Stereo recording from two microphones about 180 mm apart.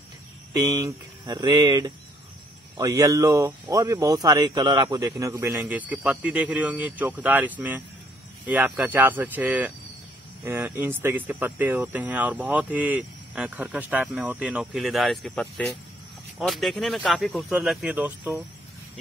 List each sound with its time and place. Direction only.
0.6 s speech: 20° right (ahead or behind)